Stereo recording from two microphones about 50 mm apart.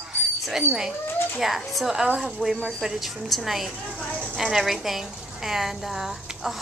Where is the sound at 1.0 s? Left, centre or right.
Left.